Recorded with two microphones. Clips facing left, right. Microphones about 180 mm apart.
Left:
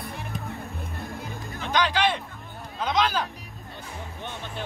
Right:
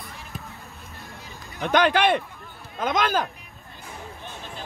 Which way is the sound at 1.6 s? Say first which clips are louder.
Right 4 dB; 55° right (ahead or behind).